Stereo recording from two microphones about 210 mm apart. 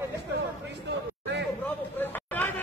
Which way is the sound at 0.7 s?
55° right (ahead or behind).